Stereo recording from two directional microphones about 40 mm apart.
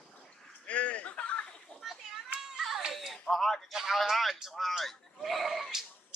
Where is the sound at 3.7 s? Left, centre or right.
Centre.